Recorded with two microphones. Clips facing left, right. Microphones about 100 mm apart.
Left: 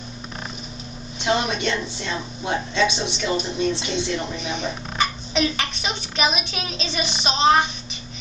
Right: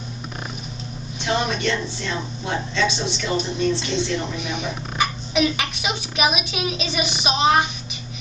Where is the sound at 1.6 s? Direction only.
20° left (ahead or behind).